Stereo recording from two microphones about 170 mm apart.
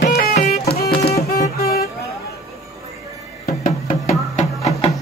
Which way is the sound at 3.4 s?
55° left (ahead or behind).